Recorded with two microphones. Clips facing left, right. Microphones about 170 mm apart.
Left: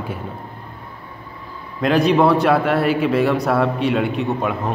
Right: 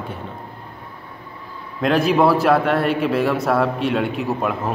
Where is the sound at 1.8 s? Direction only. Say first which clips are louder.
Left 1 dB; centre (ahead or behind).